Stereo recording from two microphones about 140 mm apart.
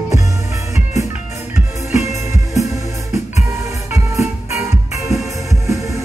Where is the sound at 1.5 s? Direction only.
20° right (ahead or behind).